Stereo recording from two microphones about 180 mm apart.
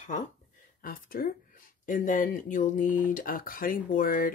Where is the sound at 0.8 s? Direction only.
55° left (ahead or behind).